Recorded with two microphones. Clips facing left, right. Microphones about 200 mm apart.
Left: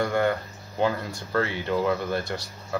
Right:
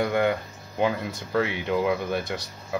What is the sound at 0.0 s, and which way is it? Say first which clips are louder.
Speech: right 1 dB; 10° right (ahead or behind).